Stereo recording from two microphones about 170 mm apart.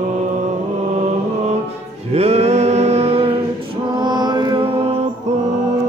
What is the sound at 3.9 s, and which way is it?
Mantra, 25° right (ahead or behind).